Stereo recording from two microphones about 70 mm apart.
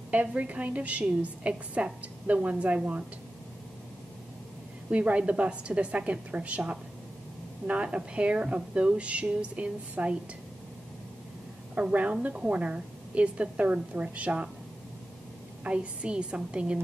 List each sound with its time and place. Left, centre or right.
0.1 s a woman's voice: right
4.9 s a woman's voice: centre
11.7 s a woman's voice: centre
15.6 s speech: centre